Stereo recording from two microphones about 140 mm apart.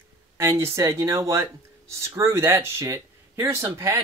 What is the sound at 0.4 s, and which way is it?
Speech, 20° right (ahead or behind).